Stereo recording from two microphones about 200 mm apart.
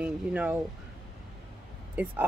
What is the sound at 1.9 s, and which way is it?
Speech, 10° right (ahead or behind).